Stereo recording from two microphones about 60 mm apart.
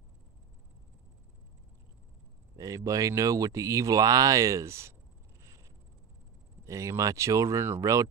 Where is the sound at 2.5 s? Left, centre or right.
Right.